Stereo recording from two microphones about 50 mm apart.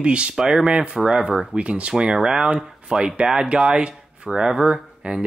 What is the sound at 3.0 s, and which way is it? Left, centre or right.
Speech, centre.